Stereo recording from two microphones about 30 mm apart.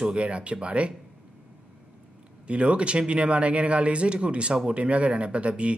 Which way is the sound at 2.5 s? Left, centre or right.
Right.